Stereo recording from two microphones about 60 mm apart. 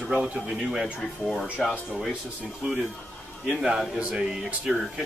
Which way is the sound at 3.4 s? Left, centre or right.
Centre.